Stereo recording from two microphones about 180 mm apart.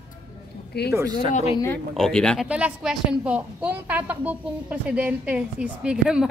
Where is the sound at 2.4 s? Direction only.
5° right (ahead or behind).